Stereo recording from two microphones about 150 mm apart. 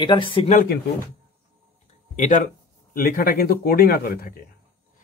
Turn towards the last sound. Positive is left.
turn(degrees=75)  # may be behind; listen again after turning